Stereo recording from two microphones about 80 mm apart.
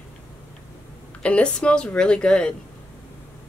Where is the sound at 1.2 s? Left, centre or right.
Centre.